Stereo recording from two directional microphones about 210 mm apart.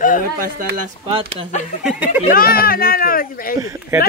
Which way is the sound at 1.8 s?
5° right (ahead or behind).